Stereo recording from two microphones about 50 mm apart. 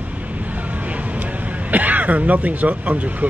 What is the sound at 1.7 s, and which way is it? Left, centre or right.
Speech, right.